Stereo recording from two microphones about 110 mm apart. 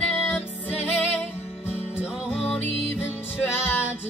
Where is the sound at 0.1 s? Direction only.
20° left (ahead or behind).